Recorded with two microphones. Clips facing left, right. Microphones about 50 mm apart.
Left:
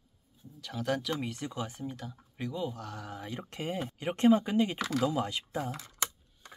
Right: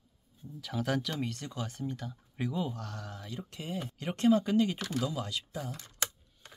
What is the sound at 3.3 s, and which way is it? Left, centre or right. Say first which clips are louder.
Speech: left 4 dB; left.